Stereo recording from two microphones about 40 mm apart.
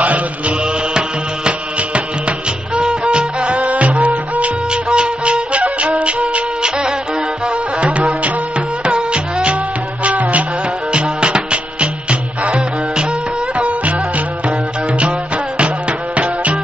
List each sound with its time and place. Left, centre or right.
0.9 s music: right
7.4 s music: right
10.0 s music: right
10.9 s music: right